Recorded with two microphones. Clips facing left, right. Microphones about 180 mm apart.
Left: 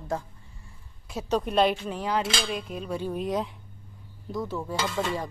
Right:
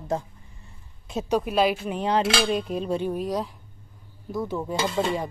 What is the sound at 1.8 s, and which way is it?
Speech, 20° right (ahead or behind).